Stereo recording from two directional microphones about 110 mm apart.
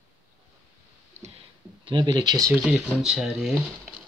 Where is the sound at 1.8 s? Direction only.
45° right (ahead or behind).